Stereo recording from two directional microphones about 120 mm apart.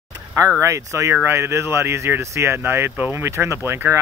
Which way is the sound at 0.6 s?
25° right (ahead or behind).